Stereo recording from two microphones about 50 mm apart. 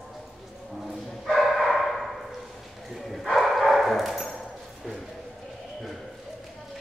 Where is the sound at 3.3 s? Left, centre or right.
Centre.